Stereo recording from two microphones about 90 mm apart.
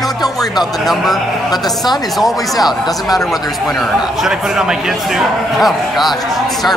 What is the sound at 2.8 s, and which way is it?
Speech, 45° left (ahead or behind).